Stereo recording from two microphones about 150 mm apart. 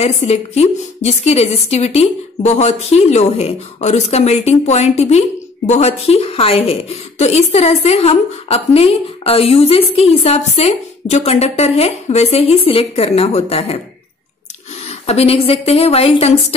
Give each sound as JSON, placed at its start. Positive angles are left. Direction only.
{"t": 0.0, "sound": "a woman's voice", "side_deg": 45}
{"t": 14.9, "sound": "a woman's voice", "side_deg": 45}